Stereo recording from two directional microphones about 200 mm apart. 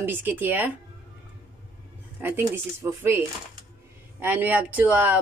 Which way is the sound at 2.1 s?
10° right (ahead or behind).